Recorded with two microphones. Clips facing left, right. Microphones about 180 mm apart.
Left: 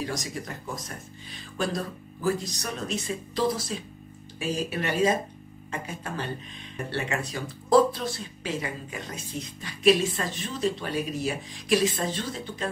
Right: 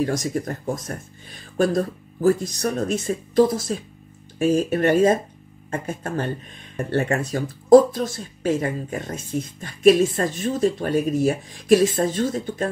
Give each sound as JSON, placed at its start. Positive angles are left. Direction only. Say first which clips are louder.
{"t": 0.0, "sound": "speech", "louder": "right 9 dB", "side_deg": -50}